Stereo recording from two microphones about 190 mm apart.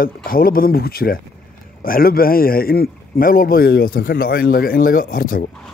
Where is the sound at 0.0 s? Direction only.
50° left (ahead or behind).